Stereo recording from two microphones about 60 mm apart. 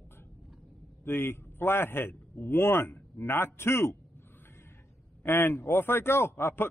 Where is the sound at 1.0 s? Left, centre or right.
Left.